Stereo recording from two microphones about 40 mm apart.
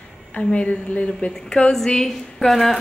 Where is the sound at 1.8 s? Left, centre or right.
Centre.